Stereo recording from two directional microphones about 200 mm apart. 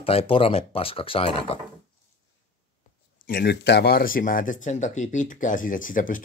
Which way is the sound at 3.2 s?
50° left (ahead or behind).